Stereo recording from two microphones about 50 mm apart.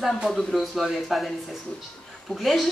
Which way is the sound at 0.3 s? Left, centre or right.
Centre.